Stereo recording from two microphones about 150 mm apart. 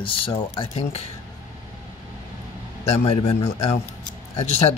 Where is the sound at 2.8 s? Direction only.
40° left (ahead or behind).